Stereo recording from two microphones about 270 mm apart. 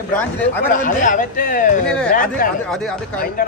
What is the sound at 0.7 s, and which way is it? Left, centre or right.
A man's voice, left.